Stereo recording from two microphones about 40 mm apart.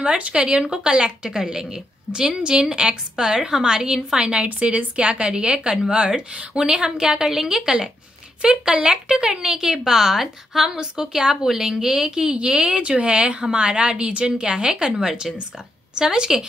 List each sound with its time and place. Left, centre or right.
0.0 s a woman's voice: right
1.3 s a woman's voice: centre